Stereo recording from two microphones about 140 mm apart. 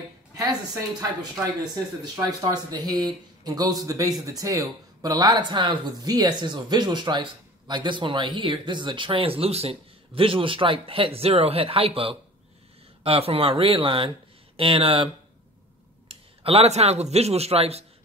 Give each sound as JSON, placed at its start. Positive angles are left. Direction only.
{"t": 1.2, "sound": "speech", "side_deg": -25}
{"t": 16.1, "sound": "speech", "side_deg": -45}